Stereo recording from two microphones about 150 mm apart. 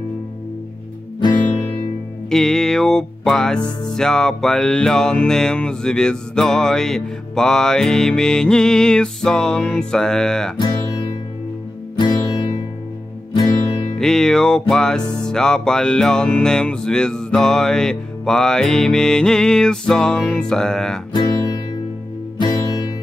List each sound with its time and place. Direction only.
1.2 s music: 30° left (ahead or behind)
2.2 s music: 5° left (ahead or behind)
10.6 s music: 30° left (ahead or behind)
13.9 s music: 5° left (ahead or behind)
21.1 s music: 25° left (ahead or behind)